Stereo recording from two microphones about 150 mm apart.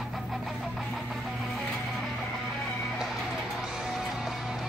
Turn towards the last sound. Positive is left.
turn(degrees=0)  # may be behind; listen again after turning